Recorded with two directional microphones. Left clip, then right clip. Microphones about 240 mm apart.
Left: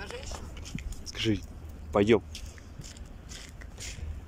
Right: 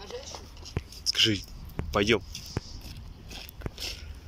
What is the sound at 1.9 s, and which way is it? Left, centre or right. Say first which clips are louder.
Speech: left 1 dB; centre.